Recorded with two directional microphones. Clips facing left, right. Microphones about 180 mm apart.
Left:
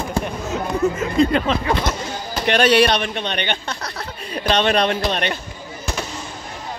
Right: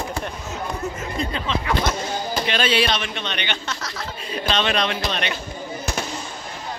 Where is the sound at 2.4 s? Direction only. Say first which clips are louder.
Left 8 dB; 55° left (ahead or behind).